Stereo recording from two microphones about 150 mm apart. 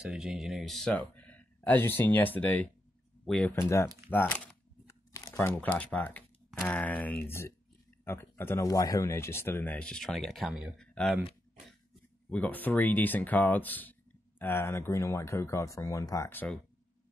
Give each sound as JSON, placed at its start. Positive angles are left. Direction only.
{"t": 0.0, "sound": "speech", "side_deg": -5}
{"t": 3.5, "sound": "speech", "side_deg": 15}
{"t": 5.1, "sound": "speech", "side_deg": 20}
{"t": 12.3, "sound": "speech", "side_deg": 10}